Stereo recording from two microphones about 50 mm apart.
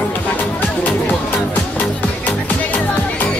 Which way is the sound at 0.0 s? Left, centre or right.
Left.